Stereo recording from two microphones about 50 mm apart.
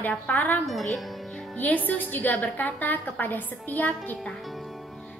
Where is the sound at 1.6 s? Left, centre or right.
Left.